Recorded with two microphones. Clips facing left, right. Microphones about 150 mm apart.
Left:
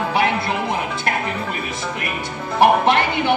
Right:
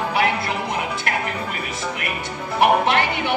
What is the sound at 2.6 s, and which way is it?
Speech, 30° left (ahead or behind).